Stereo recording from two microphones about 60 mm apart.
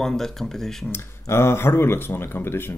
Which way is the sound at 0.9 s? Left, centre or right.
Left.